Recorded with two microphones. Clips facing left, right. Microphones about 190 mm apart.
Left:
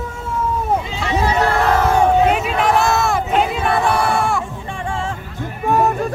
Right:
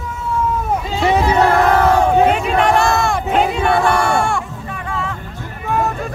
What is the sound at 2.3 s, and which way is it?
Speech, centre (ahead or behind).